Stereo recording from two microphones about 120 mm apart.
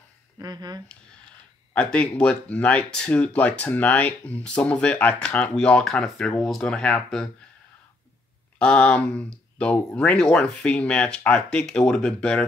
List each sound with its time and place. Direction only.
0.4 s speech: 35° right (ahead or behind)
1.7 s speech: 10° left (ahead or behind)
8.5 s speech: 10° left (ahead or behind)